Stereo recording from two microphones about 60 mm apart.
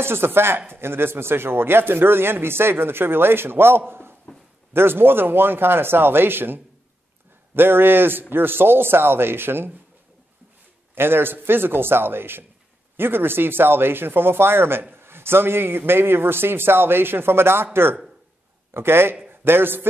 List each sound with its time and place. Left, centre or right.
0.0 s speech: right
11.0 s speech: right
18.7 s a man's voice: right